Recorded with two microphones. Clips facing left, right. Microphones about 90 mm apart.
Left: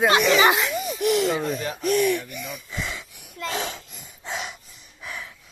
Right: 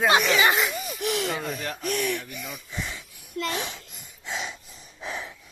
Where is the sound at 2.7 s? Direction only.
85° left.